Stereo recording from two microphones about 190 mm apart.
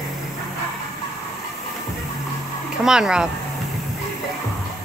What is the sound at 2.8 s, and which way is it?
Speech, 5° right (ahead or behind).